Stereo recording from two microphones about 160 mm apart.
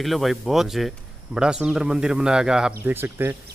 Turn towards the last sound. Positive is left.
turn(degrees=-15)  # may be behind; listen again after turning